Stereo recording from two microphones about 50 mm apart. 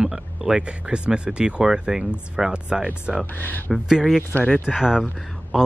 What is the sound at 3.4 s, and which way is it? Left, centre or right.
Speech, left.